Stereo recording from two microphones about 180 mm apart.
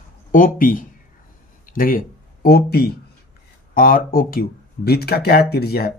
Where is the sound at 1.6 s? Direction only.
50° left (ahead or behind).